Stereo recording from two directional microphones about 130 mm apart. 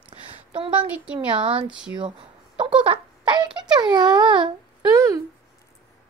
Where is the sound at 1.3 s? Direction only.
40° right (ahead or behind).